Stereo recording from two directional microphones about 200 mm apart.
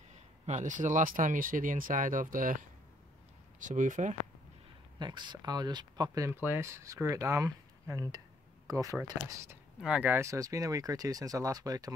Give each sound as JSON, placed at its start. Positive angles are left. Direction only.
{"t": 0.1, "sound": "speech", "side_deg": -35}
{"t": 4.9, "sound": "speech", "side_deg": -20}